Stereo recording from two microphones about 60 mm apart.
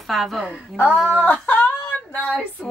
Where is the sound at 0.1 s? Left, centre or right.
Centre.